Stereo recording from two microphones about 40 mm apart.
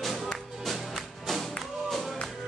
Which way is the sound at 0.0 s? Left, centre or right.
Centre.